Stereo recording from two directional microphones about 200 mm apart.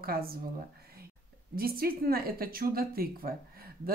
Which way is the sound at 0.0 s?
50° right (ahead or behind).